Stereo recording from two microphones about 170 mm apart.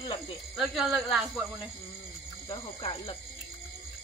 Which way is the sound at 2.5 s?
20° left (ahead or behind).